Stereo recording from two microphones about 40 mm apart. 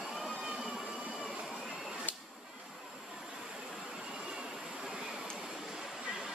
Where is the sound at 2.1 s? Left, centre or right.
Left.